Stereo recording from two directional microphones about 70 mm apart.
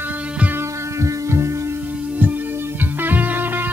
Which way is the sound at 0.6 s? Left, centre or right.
Right.